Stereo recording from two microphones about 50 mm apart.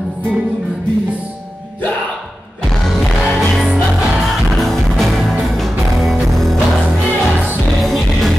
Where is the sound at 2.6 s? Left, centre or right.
Centre.